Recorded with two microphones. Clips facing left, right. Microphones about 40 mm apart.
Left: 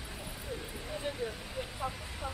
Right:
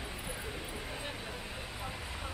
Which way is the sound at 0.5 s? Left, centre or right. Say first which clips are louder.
Even; centre.